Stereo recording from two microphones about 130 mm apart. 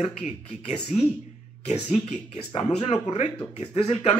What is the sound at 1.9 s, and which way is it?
Speech, 60° left (ahead or behind).